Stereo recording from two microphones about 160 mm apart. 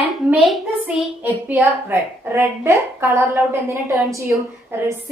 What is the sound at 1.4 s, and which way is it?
A woman's voice, 15° right (ahead or behind).